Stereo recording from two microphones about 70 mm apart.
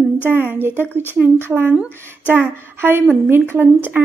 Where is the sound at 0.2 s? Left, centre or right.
Right.